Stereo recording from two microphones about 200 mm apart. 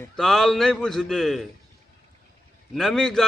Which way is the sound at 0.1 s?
Centre (ahead or behind).